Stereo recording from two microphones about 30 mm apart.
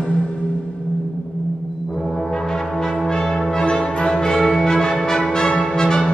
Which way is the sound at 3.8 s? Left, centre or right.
Left.